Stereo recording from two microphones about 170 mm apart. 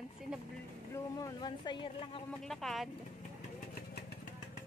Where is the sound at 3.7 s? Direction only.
65° left (ahead or behind).